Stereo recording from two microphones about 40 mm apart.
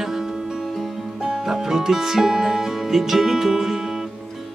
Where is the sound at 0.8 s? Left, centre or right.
Centre.